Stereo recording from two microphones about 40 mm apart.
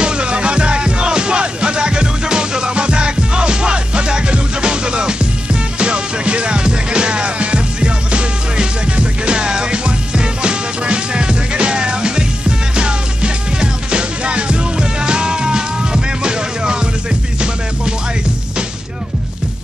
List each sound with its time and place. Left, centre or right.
0.0 s music: right